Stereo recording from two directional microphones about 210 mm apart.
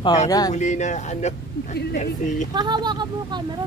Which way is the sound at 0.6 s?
35° left (ahead or behind).